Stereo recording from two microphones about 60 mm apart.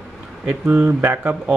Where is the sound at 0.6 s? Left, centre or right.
Right.